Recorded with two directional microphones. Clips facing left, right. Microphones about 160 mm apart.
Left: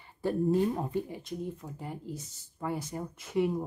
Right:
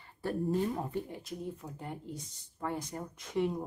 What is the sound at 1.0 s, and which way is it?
Speech, centre (ahead or behind).